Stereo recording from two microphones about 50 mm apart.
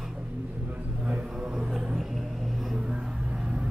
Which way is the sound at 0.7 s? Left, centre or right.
Right.